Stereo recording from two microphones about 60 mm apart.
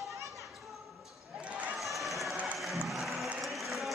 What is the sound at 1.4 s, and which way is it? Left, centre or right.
Basketball bounce, right.